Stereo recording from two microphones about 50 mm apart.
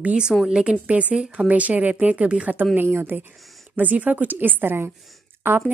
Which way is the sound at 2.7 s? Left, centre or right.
Right.